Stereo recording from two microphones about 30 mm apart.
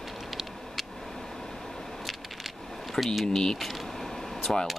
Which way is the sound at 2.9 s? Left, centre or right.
Centre.